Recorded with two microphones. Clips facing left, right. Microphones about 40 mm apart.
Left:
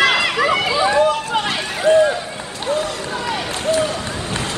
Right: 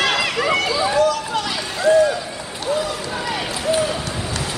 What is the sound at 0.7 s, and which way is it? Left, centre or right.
Run, left.